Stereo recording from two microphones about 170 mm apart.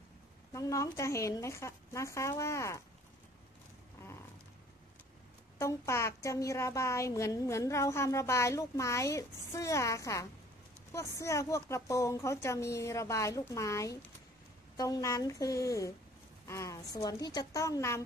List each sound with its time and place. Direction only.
0.5 s a woman's voice: 20° left (ahead or behind)
5.6 s a woman's voice: 15° left (ahead or behind)